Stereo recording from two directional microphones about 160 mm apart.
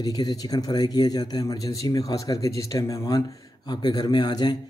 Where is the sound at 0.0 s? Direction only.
25° left (ahead or behind).